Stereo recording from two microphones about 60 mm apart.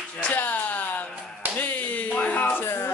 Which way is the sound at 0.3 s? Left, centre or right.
Left.